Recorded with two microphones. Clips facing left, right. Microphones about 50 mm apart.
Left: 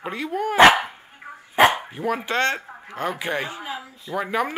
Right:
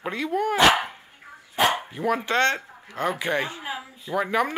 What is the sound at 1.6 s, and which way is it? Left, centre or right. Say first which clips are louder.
Dog: left 5 dB; left.